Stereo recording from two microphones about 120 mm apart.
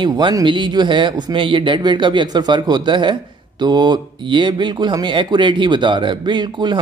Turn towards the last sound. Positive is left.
turn(degrees=-40)  # may be behind; listen again after turning